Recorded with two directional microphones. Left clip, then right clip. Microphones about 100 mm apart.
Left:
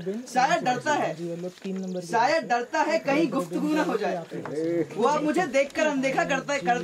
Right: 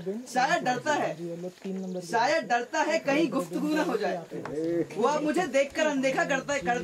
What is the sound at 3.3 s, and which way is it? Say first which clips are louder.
Speech: left 2 dB; centre (ahead or behind).